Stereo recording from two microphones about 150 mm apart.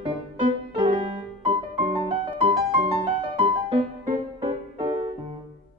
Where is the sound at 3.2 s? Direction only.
35° right (ahead or behind).